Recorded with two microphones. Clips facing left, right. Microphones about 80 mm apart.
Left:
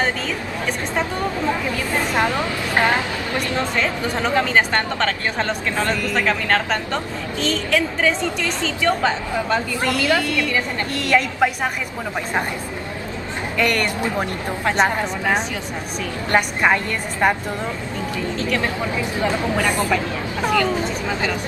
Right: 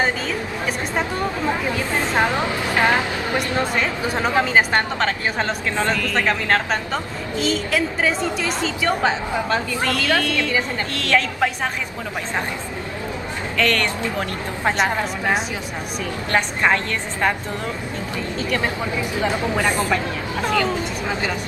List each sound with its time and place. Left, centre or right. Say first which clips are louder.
2.1 s speech: right 2 dB; right
4.1 s a woman's voice: right 1 dB; centre
5.9 s a woman's voice: even; centre
6.2 s a woman's voice: even; centre
9.8 s a woman's voice: left 2 dB; centre
13.6 s a woman's voice: even; centre
14.8 s a woman's voice: left 2 dB; centre
16.3 s a woman's voice: left 1 dB; centre
18.5 s speech: right 1 dB; centre